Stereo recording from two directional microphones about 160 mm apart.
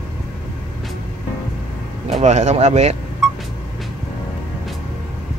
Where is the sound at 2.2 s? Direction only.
45° right (ahead or behind).